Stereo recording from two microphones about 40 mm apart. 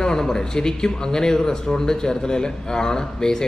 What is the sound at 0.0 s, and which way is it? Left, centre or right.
A man's voice, centre.